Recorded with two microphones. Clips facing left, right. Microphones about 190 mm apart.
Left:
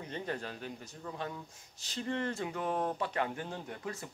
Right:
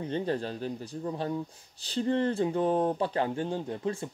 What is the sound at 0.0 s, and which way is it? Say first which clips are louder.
A man's voice: right 8 dB; 30° right (ahead or behind).